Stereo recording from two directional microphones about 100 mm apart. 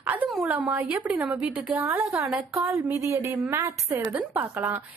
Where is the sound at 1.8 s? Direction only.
30° right (ahead or behind).